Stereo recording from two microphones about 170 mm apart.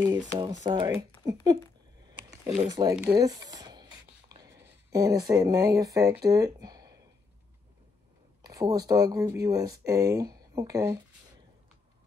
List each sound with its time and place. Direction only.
0.0 s speech: 25° right (ahead or behind)
2.0 s a sound: 25° right (ahead or behind)
2.7 s speech: 25° right (ahead or behind)
3.2 s writing: 20° right (ahead or behind)
4.6 s speech: 20° right (ahead or behind)
8.4 s speech: 20° right (ahead or behind)